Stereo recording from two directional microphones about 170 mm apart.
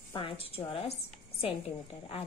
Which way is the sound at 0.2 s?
30° left (ahead or behind).